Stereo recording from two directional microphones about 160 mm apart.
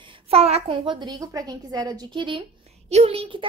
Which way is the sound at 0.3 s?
40° right (ahead or behind).